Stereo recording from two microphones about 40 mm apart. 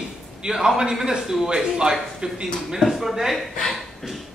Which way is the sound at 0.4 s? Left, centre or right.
Centre.